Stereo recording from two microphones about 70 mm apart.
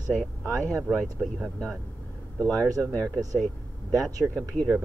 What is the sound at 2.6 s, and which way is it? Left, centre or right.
Speech, right.